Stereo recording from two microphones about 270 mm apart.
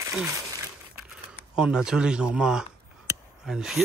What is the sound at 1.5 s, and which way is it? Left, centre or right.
Speech, centre.